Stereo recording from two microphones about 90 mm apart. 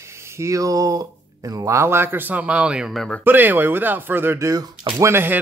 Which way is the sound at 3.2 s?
20° right (ahead or behind).